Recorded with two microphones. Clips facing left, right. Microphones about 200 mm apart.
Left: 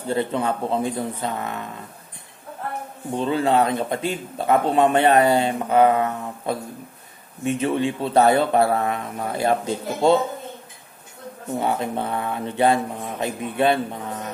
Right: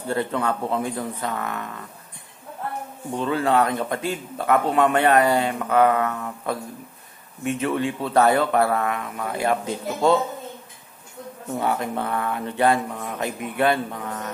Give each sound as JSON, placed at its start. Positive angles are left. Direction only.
{"t": 0.1, "sound": "speech", "side_deg": 20}
{"t": 3.1, "sound": "speech", "side_deg": 25}
{"t": 11.6, "sound": "speech", "side_deg": 25}